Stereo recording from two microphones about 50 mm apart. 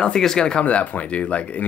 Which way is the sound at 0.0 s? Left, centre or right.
Centre.